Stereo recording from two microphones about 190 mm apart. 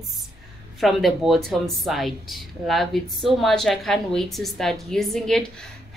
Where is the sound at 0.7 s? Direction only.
Centre (ahead or behind).